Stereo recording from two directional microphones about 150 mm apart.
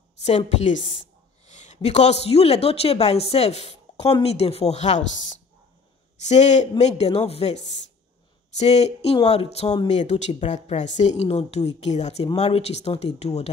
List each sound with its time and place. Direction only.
0.6 s a woman's voice: 50° left (ahead or behind)